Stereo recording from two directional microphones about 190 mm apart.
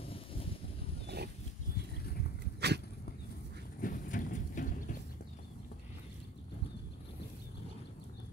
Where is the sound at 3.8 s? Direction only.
45° left (ahead or behind).